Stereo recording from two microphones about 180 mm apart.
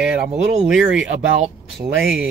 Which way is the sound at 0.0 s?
5° right (ahead or behind).